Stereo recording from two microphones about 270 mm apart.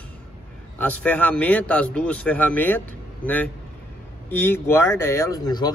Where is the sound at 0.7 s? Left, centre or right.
Centre.